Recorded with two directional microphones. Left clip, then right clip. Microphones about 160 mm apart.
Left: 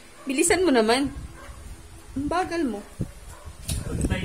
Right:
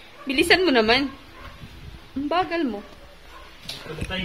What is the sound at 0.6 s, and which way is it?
Speech, 30° left (ahead or behind).